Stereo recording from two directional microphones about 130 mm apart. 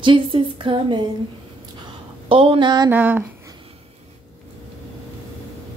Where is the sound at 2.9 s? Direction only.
15° right (ahead or behind).